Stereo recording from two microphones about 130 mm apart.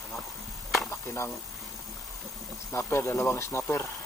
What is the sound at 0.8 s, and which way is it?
Chop, 20° left (ahead or behind).